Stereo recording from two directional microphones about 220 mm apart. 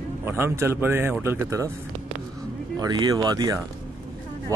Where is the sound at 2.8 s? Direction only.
15° right (ahead or behind).